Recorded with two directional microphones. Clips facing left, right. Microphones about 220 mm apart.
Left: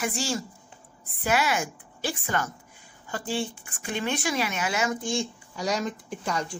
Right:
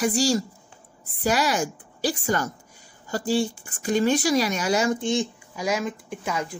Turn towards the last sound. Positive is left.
turn(degrees=-5)  # may be behind; listen again after turning